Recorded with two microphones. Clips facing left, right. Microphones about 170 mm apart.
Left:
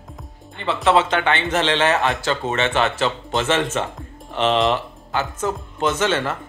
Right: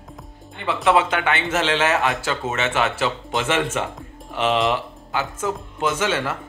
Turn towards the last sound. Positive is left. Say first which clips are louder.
# left 2 dB
turn(degrees=-10)  # may be behind; listen again after turning